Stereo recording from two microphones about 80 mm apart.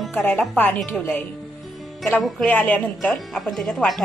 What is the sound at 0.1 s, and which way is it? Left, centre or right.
Speech, centre.